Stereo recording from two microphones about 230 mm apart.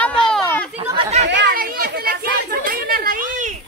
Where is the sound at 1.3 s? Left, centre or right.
Right.